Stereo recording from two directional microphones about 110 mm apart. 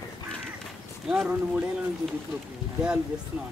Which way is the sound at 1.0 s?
5° right (ahead or behind).